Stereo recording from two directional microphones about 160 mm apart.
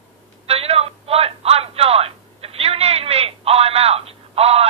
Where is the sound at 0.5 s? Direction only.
40° right (ahead or behind).